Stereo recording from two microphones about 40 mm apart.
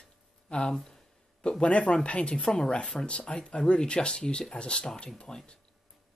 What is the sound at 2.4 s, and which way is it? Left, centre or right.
Speech, centre.